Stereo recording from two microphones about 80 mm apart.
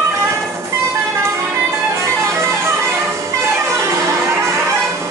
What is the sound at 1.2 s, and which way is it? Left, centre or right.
Music, right.